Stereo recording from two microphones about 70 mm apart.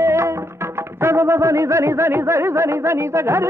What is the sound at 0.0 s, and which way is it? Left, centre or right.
Music, right.